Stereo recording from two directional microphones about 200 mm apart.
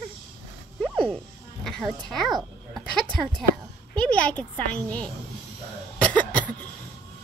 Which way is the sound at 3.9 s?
5° left (ahead or behind).